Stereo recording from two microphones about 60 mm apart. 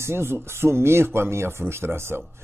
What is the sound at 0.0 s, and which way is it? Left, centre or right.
Speech, right.